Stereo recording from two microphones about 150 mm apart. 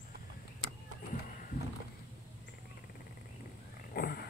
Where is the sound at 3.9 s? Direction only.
85° left.